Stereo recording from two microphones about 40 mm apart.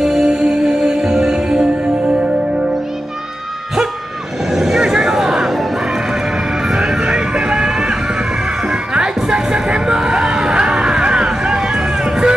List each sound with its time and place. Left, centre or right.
0.0 s music: centre
4.5 s music: centre